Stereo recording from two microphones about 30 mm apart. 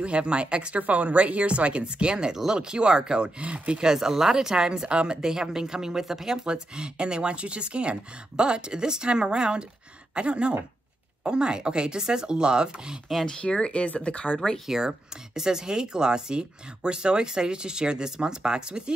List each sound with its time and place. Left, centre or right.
0.0 s speech: right
0.7 s speech: right
3.4 s speech: right
3.8 s speech: centre
4.6 s speech: right
5.2 s speech: centre
6.4 s speech: right
13.4 s speech: left
14.7 s speech: centre; by 18.9 s right